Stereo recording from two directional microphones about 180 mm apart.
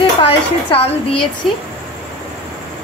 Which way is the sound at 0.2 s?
30° left (ahead or behind).